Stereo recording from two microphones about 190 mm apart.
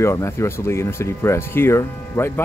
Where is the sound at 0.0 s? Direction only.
15° left (ahead or behind).